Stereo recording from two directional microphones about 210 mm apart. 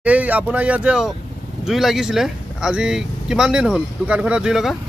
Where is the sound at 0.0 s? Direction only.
5° right (ahead or behind).